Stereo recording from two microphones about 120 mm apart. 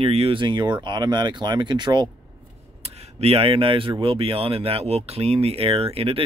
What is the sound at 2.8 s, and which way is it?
Speech, 60° right (ahead or behind).